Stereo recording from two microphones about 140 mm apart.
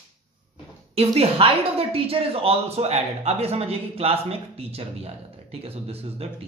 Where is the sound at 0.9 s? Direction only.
45° right (ahead or behind).